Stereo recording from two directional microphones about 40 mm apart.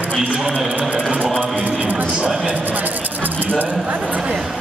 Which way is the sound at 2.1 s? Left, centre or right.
Right.